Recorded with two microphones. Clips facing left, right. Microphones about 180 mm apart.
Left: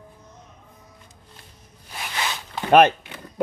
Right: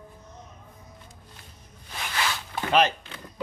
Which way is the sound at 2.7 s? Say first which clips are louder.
Left 7 dB; 55° left (ahead or behind).